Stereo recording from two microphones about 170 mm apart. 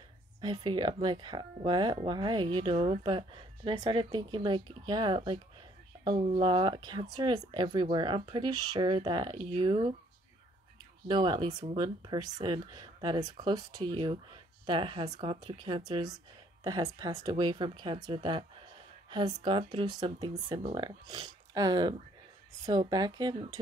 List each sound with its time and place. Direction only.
0.4 s speech: 25° right (ahead or behind)
11.1 s speech: 25° right (ahead or behind)